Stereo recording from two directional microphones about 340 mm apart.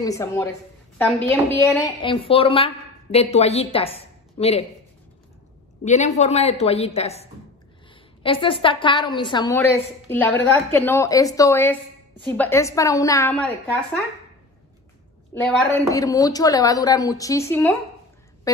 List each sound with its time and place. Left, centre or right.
0.0 s a woman's voice: centre
5.9 s a woman's voice: left; by 13.6 s centre
15.9 s a woman's voice: centre